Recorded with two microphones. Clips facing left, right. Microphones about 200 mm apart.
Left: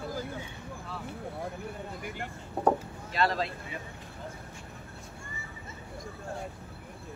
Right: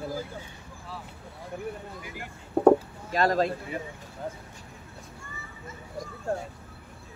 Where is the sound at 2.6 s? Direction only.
45° right (ahead or behind).